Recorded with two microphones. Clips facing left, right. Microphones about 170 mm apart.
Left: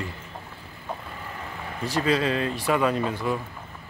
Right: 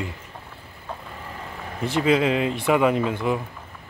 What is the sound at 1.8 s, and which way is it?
Speech, 20° right (ahead or behind).